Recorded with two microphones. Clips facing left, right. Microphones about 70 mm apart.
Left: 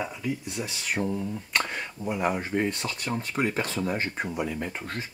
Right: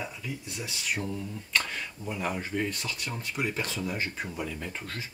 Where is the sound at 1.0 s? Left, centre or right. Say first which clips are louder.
Left 6 dB; left.